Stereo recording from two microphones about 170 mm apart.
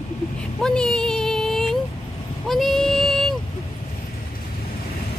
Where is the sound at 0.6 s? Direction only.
5° left (ahead or behind).